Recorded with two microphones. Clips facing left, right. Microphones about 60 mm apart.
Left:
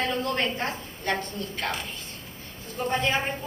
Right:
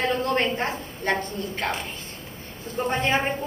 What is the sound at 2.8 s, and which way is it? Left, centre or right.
Speech, right.